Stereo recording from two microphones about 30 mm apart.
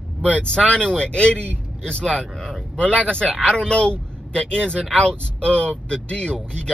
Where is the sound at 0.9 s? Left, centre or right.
Left.